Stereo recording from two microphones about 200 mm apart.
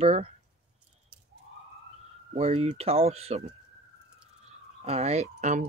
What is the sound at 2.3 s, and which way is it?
Speech, 30° right (ahead or behind).